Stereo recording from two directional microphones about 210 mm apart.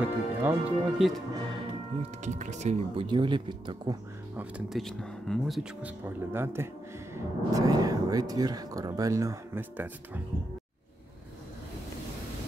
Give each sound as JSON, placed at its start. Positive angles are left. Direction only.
{"t": 0.0, "sound": "speech", "side_deg": -10}
{"t": 2.2, "sound": "speech", "side_deg": -35}
{"t": 4.4, "sound": "speech", "side_deg": -5}